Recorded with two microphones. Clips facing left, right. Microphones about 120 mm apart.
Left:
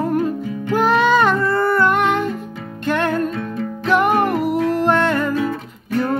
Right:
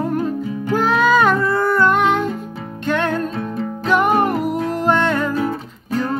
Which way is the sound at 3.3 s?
35° right (ahead or behind).